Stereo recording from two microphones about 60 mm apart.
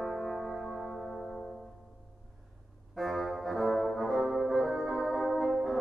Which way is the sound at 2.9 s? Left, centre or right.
Centre.